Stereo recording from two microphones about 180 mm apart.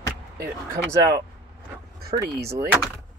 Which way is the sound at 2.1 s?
35° right (ahead or behind).